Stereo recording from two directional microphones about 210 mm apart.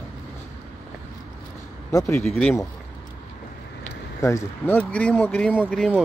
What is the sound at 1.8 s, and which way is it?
Speech, 15° left (ahead or behind).